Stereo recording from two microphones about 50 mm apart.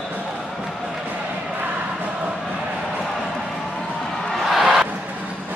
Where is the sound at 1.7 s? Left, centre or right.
Right.